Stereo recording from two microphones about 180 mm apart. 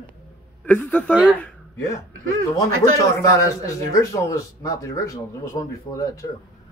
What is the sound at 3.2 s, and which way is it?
Speech, 20° left (ahead or behind).